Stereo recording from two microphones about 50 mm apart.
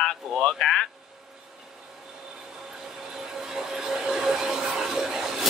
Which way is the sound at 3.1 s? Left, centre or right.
Centre.